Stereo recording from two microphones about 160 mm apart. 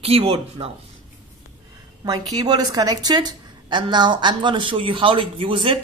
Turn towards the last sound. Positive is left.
turn(degrees=-35)  # may be behind; listen again after turning